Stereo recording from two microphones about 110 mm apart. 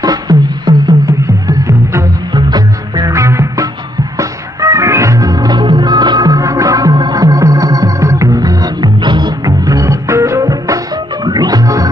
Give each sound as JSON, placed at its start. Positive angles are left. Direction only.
{"t": 0.0, "sound": "beatboxing", "side_deg": -35}
{"t": 1.2, "sound": "music", "side_deg": -30}
{"t": 3.1, "sound": "music", "side_deg": -25}